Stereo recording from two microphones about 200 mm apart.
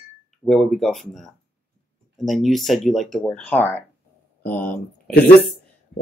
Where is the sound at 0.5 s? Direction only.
Centre (ahead or behind).